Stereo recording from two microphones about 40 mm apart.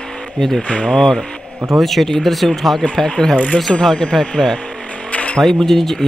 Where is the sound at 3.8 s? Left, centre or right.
Centre.